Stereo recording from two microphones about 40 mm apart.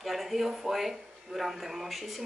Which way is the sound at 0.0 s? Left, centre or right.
Centre.